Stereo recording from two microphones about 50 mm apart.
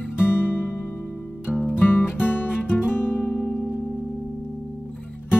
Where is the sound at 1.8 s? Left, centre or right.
Left.